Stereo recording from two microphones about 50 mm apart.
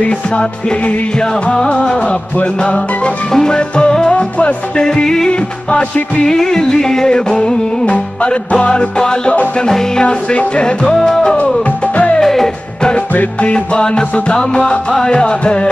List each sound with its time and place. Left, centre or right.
0.0 s music: left
4.8 s music: centre
5.3 s music: left
6.2 s music: centre
11.3 s music: left
12.2 s music: centre
13.1 s music: left
13.5 s music: left